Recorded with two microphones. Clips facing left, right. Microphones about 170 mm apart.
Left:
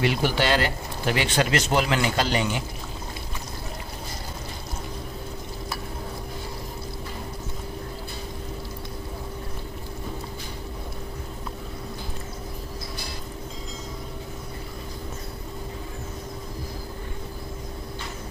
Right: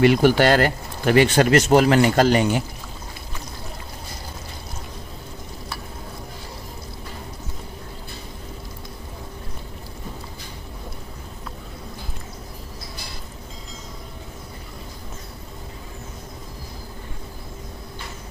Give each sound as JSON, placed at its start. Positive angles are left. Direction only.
{"t": 0.0, "sound": "speech", "side_deg": -50}